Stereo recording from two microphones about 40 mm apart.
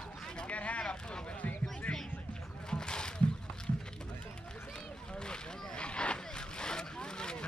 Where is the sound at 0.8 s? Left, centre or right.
Left.